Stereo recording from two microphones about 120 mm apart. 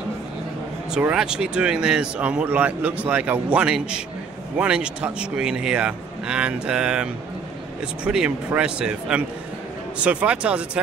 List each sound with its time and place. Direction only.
0.9 s speech: 5° right (ahead or behind)